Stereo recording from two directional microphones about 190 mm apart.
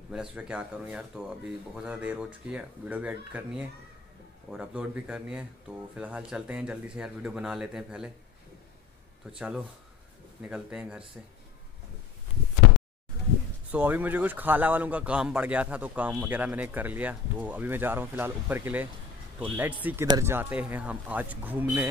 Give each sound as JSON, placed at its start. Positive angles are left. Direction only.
{"t": 0.1, "sound": "speech", "side_deg": -5}
{"t": 9.4, "sound": "speech", "side_deg": -5}
{"t": 13.7, "sound": "a man's voice", "side_deg": -10}